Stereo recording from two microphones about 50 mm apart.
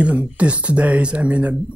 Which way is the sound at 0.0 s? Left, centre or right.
Right.